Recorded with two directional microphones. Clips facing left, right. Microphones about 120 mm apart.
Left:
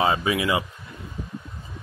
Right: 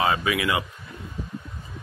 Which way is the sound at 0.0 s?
30° left (ahead or behind).